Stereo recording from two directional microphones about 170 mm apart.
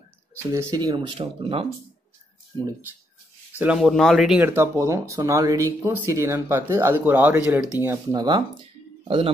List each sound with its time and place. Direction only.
0.5 s speech: 20° right (ahead or behind)
3.5 s speech: 5° right (ahead or behind)
4.4 s speech: 15° right (ahead or behind)
8.2 s speech: 25° right (ahead or behind)